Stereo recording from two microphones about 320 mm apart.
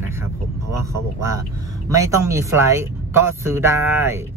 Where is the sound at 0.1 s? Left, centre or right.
Centre.